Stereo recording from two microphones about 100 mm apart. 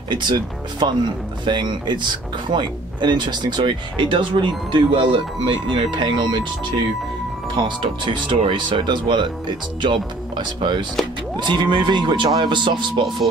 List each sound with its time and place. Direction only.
0.1 s speech: 50° right (ahead or behind)
7.5 s speech: 50° right (ahead or behind)